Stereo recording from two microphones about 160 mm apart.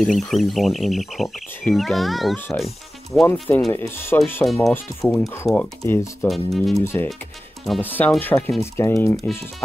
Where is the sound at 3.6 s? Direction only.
15° left (ahead or behind).